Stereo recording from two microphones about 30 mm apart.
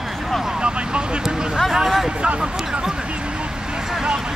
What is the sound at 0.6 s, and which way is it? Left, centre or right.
Vehicle, right.